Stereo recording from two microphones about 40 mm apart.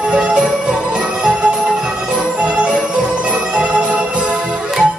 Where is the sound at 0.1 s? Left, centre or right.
Right.